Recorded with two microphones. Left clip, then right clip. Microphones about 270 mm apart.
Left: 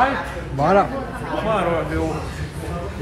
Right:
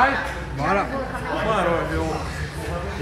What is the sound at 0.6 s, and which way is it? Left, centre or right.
Speech, centre.